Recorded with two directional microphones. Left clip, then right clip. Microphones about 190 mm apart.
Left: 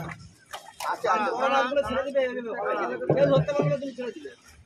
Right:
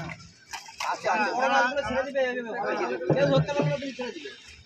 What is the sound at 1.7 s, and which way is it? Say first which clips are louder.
Speech: left 2 dB; 50° right (ahead or behind).